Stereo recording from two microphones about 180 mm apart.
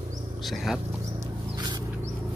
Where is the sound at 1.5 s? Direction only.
25° right (ahead or behind).